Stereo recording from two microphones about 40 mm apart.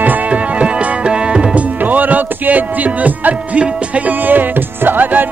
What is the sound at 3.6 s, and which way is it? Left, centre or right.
Speech, right.